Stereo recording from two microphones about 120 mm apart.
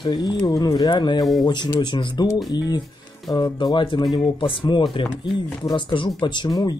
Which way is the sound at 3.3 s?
40° left (ahead or behind).